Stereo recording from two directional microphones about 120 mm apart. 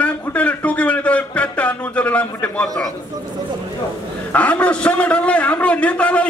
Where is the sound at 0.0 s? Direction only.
10° left (ahead or behind).